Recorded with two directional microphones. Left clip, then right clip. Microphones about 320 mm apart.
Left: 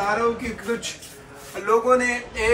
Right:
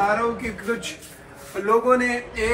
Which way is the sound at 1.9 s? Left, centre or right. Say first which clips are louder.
Left 1 dB; centre.